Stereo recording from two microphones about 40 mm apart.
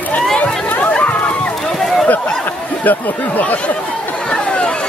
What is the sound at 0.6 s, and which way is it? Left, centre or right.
Chatter, left.